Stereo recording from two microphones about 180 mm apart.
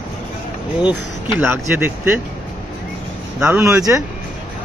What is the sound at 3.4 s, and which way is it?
Speech, 15° right (ahead or behind).